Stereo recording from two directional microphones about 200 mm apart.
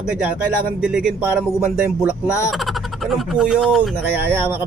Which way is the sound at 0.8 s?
5° right (ahead or behind).